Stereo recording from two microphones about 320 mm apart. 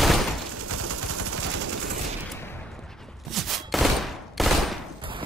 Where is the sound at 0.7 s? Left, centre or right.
Right.